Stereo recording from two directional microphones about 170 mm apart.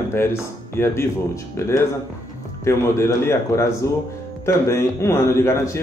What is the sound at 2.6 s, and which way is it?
Speech, 15° left (ahead or behind).